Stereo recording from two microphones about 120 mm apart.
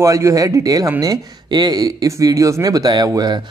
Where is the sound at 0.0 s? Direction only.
25° right (ahead or behind).